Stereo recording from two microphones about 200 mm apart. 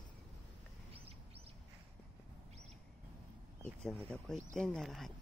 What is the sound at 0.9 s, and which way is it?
Bird, 30° right (ahead or behind).